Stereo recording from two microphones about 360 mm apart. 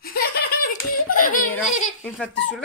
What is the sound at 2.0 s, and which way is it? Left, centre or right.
Speech, centre.